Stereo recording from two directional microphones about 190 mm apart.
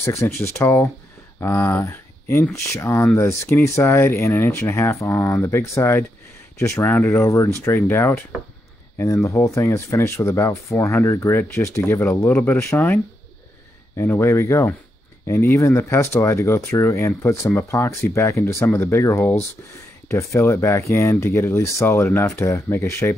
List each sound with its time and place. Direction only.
0.0 s speech: 15° left (ahead or behind)
13.9 s speech: 10° left (ahead or behind)